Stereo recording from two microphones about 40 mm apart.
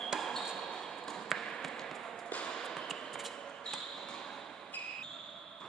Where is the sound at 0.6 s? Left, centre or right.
Centre.